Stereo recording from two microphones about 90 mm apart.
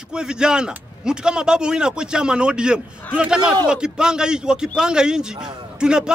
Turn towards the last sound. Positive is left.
turn(degrees=-10)  # may be behind; listen again after turning